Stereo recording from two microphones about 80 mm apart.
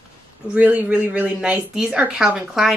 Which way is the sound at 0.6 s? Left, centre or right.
Centre.